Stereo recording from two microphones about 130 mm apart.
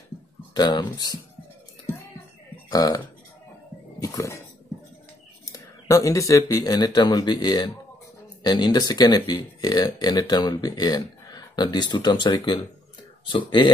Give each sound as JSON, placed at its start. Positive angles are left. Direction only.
{"t": 0.6, "sound": "speech", "side_deg": 35}
{"t": 2.7, "sound": "speech", "side_deg": 30}
{"t": 4.0, "sound": "a sound", "side_deg": 25}
{"t": 5.5, "sound": "speech", "side_deg": 25}